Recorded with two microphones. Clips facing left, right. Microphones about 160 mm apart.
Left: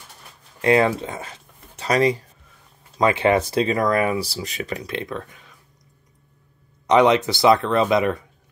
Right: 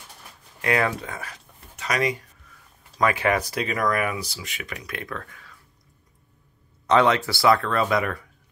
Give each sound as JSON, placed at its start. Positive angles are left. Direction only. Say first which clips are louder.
{"t": 0.6, "sound": "speech", "louder": "left 6 dB", "side_deg": 30}
{"t": 6.9, "sound": "speech", "louder": "left 4 dB", "side_deg": 15}